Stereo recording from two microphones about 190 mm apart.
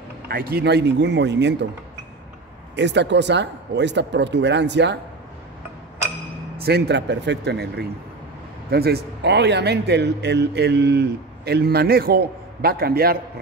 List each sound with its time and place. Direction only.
0.3 s a man's voice: 55° right (ahead or behind)
2.7 s a man's voice: 65° right (ahead or behind)
6.6 s a man's voice: 60° right (ahead or behind)